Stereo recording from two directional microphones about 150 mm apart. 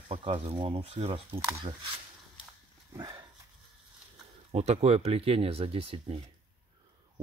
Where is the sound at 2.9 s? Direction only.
25° right (ahead or behind).